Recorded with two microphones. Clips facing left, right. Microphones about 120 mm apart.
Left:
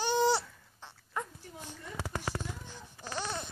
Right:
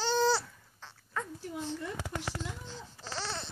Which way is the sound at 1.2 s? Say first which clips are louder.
Even; 15° left (ahead or behind).